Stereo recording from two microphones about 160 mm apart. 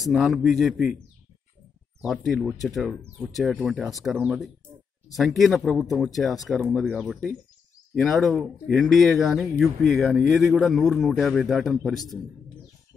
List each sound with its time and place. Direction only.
0.0 s speech: centre (ahead or behind)
2.0 s speech: centre (ahead or behind)